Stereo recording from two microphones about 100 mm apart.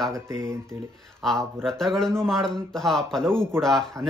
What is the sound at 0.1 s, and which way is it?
Speech, 30° right (ahead or behind).